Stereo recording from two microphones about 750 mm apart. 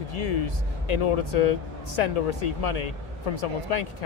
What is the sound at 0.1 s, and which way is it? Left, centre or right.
Speech, left.